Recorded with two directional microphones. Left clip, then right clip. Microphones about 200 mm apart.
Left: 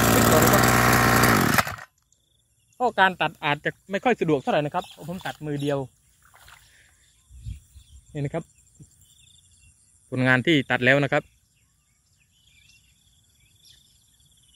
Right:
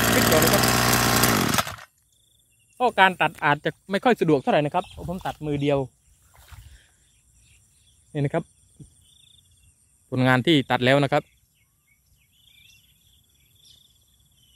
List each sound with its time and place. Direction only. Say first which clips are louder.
0.1 s a sound: even; 20° left (ahead or behind)
2.8 s speech: right 2 dB; 15° right (ahead or behind)
3.6 s speech: right 2 dB; 30° right (ahead or behind)
6.3 s a sound: left 2 dB; centre (ahead or behind)
8.1 s speech: right 5 dB; 45° right (ahead or behind)
10.0 s speech: even; 20° right (ahead or behind)